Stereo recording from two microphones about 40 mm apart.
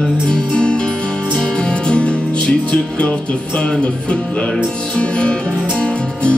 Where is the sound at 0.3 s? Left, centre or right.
Left.